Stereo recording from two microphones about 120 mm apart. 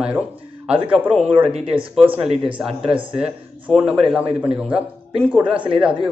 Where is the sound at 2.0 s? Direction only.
55° right (ahead or behind).